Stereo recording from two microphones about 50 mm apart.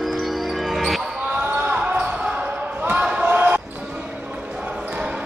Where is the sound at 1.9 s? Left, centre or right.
Right.